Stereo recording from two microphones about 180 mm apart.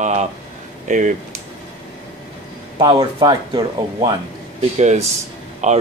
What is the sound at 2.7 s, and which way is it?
Speech, 25° right (ahead or behind).